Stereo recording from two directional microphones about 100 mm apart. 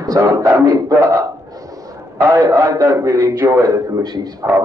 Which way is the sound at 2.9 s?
25° right (ahead or behind).